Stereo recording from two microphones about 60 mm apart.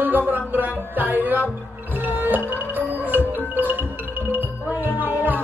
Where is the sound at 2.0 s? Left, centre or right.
Right.